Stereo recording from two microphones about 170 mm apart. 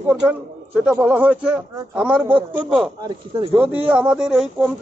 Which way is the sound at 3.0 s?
25° right (ahead or behind).